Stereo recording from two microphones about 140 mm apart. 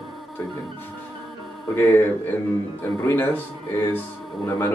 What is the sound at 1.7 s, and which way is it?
A man's voice, 15° left (ahead or behind).